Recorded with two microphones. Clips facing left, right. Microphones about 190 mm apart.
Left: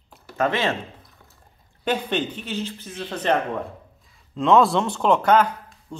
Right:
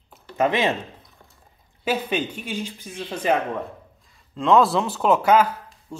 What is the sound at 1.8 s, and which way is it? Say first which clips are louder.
Speech: even; 5° right (ahead or behind).